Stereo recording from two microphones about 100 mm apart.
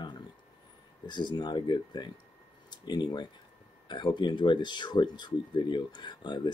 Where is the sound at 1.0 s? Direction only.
50° left (ahead or behind).